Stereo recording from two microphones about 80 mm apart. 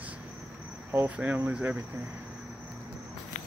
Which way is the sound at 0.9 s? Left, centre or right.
Centre.